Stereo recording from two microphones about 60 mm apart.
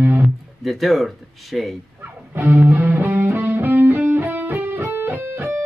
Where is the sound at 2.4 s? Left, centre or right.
Right.